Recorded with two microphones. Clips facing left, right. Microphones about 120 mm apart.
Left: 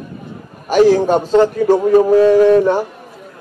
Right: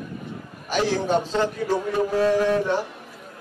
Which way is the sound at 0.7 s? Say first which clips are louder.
Left 11 dB; 50° left (ahead or behind).